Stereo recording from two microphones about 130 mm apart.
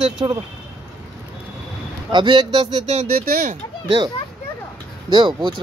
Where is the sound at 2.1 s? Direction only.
35° right (ahead or behind).